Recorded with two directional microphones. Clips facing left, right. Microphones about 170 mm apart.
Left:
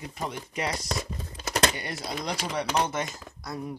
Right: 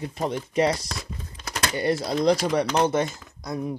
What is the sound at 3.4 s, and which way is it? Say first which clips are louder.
Speech: right 6 dB; 20° right (ahead or behind).